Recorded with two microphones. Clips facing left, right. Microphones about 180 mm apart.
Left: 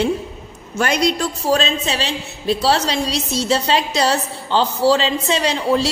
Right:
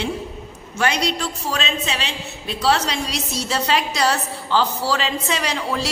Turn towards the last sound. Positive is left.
turn(degrees=25)  # may be behind; listen again after turning